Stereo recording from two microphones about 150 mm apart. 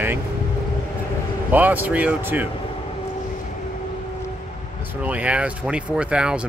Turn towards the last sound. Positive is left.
turn(degrees=-5)  # may be behind; listen again after turning